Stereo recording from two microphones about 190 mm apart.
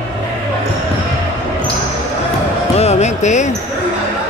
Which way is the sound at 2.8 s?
35° left (ahead or behind).